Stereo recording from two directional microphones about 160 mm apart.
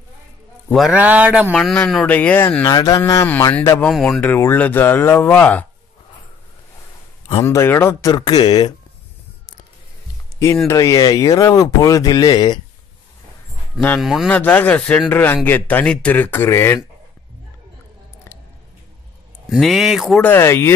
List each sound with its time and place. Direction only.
0.7 s speech: centre (ahead or behind)
1.5 s speech: 5° left (ahead or behind)
2.6 s speech: 25° left (ahead or behind); by 4.2 s centre (ahead or behind)
4.2 s speech: 10° left (ahead or behind)
7.4 s speech: 15° left (ahead or behind)
10.7 s speech: 20° left (ahead or behind)
13.7 s speech: 5° left (ahead or behind)
19.5 s speech: centre (ahead or behind)
20.2 s speech: 15° left (ahead or behind)